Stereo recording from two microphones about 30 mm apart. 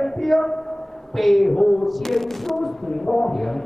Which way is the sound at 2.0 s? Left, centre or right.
Centre.